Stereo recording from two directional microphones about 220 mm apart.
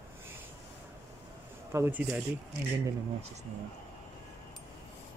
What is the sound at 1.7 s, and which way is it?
Speech, 10° right (ahead or behind).